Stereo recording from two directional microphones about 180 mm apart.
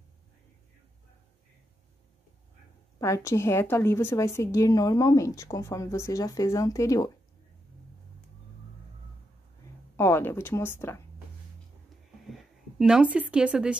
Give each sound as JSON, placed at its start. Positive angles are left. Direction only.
{"t": 3.0, "sound": "a woman's voice", "side_deg": 15}
{"t": 9.9, "sound": "a woman's voice", "side_deg": 15}
{"t": 12.3, "sound": "speech", "side_deg": -5}